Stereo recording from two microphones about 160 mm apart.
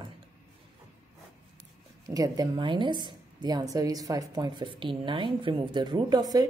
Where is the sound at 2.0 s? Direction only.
20° right (ahead or behind).